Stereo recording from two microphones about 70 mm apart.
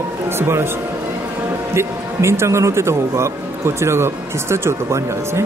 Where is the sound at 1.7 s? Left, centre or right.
Right.